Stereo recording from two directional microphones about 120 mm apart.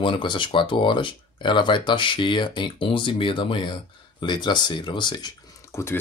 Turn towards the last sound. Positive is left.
turn(degrees=20)  # may be behind; listen again after turning